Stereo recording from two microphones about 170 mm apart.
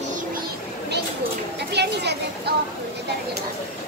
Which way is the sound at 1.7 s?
80° right.